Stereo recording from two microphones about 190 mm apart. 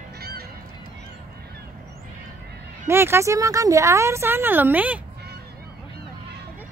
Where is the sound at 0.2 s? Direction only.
55° right (ahead or behind).